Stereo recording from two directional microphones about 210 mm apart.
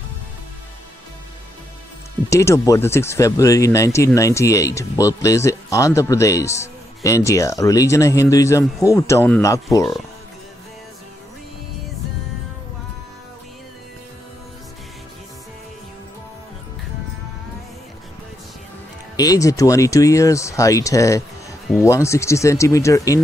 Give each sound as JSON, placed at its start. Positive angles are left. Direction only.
{"t": 2.2, "sound": "speech", "side_deg": 15}
{"t": 19.1, "sound": "speech", "side_deg": 15}